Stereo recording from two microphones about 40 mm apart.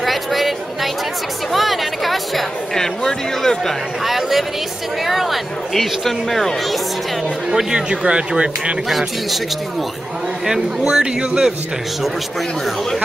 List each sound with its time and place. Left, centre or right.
0.0 s a sound: centre
1.5 s chatter: centre
2.7 s a sound: centre
4.0 s a sound: centre
5.0 s speech: centre
7.4 s speech: centre
8.8 s speech: centre
10.4 s a man's voice: centre
12.0 s speech: centre